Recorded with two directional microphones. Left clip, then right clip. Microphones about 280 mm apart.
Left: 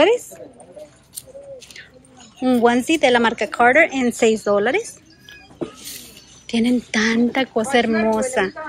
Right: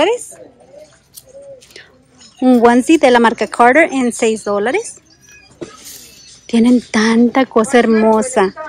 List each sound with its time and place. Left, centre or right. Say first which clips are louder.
2.4 s speech: right 7 dB; right
6.4 s speech: right 7 dB; right